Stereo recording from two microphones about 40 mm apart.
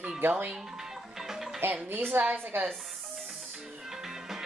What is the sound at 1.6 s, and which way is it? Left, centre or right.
A woman's voice, right.